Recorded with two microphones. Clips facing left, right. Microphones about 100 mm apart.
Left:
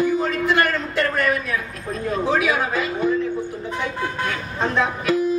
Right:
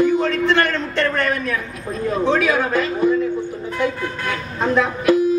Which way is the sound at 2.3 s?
5° left (ahead or behind).